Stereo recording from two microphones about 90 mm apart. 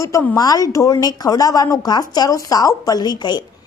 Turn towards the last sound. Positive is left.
turn(degrees=50)  # may be behind; listen again after turning